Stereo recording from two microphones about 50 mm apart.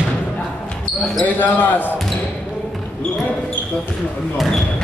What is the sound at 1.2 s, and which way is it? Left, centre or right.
Speech, left.